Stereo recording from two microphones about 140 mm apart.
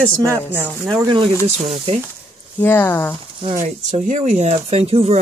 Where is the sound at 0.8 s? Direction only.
35° right (ahead or behind).